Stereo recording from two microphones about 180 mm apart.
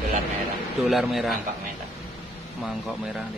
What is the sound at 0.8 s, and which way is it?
Speech, centre (ahead or behind).